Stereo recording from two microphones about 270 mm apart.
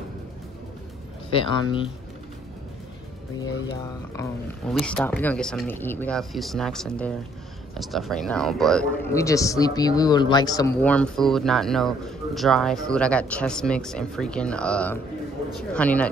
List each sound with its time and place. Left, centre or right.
1.3 s speech: centre
4.2 s a man's voice: centre